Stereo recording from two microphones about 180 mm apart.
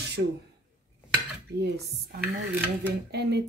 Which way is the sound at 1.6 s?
65° right (ahead or behind).